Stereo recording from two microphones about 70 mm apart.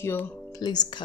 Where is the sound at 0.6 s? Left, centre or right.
Left.